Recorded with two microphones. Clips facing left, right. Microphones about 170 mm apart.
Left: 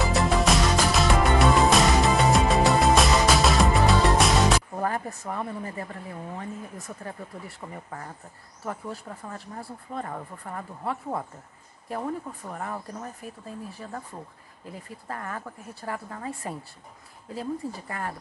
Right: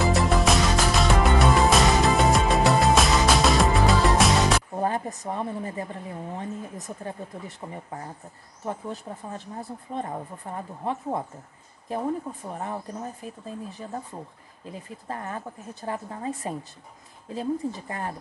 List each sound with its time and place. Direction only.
0.0 s music: centre (ahead or behind)
4.7 s speech: 20° right (ahead or behind)